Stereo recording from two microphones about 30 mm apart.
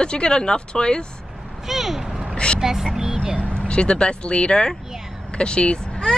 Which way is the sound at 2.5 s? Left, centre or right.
Centre.